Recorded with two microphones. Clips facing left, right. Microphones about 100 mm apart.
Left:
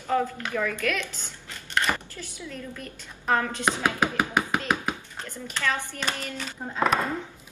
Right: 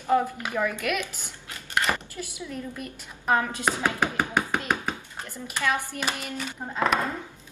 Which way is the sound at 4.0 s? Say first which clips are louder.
Left 1 dB; 5° left (ahead or behind).